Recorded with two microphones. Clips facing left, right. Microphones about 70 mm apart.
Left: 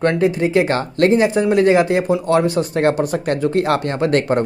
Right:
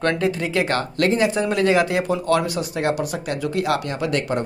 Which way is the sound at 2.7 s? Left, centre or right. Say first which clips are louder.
Left 6 dB; left.